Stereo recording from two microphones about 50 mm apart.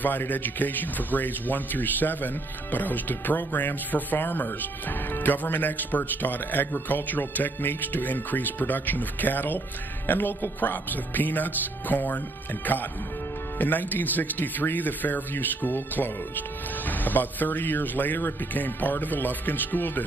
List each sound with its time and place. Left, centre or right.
0.0 s speech: left